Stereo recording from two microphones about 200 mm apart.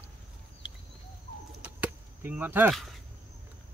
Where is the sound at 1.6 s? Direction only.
10° right (ahead or behind).